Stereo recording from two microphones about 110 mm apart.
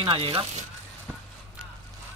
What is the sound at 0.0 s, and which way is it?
Speech, 50° right (ahead or behind).